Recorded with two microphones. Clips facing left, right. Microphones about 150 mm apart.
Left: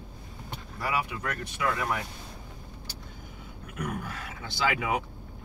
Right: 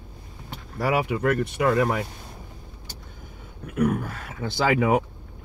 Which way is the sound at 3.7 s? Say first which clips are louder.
Right 11 dB; 50° right (ahead or behind).